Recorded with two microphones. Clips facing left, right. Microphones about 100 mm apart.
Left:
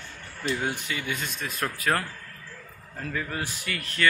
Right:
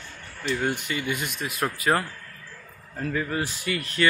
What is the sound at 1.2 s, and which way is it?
Speech, 15° right (ahead or behind).